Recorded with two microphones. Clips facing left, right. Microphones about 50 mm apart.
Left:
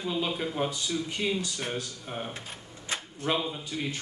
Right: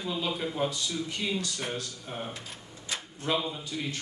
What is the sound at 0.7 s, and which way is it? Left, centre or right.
Speech, left.